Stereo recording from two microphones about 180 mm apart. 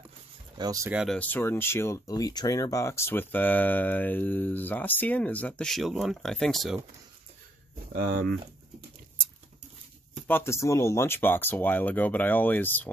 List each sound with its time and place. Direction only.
0.6 s speech: 20° right (ahead or behind)
0.9 s speech: 5° left (ahead or behind)
7.9 s speech: 55° right (ahead or behind)
10.2 s speech: 15° left (ahead or behind)